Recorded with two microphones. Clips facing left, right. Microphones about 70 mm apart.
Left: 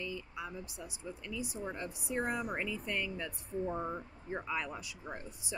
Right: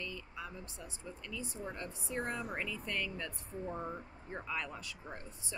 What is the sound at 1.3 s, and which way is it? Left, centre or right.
Speech, centre.